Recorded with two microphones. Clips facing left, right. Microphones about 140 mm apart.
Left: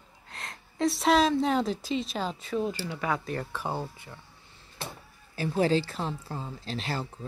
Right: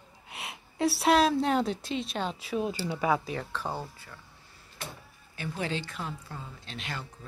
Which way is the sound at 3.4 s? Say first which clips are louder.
Left 2 dB; 15° left (ahead or behind).